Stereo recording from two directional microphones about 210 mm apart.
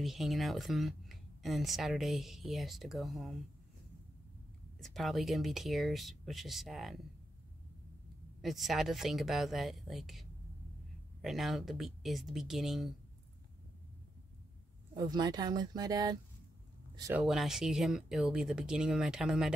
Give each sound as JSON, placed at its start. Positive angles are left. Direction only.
{"t": 0.0, "sound": "speech", "side_deg": 0}
{"t": 4.7, "sound": "speech", "side_deg": 0}
{"t": 8.4, "sound": "speech", "side_deg": 0}
{"t": 15.0, "sound": "speech", "side_deg": -20}
{"t": 17.1, "sound": "speech", "side_deg": 0}